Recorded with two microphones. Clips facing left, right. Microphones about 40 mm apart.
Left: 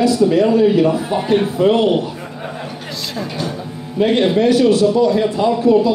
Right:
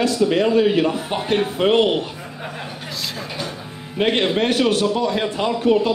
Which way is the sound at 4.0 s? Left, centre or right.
Right.